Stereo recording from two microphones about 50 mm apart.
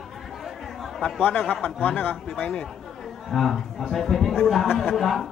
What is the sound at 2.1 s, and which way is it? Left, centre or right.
A man's voice, centre.